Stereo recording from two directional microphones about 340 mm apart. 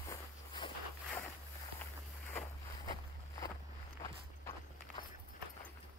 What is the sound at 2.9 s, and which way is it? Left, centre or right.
Walk, centre.